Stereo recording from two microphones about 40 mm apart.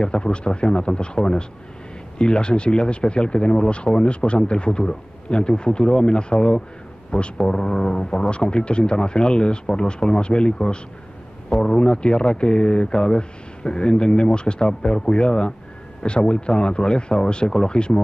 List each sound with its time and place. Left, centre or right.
0.0 s speech: left